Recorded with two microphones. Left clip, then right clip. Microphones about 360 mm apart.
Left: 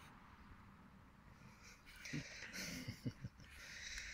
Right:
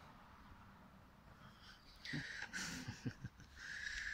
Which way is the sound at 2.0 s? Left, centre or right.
Centre.